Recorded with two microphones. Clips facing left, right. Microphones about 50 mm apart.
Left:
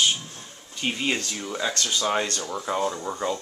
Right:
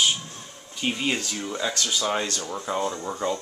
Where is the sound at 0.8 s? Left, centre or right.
Centre.